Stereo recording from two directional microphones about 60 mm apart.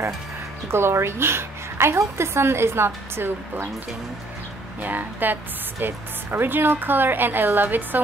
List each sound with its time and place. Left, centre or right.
0.7 s a woman's voice: right
4.8 s speech: right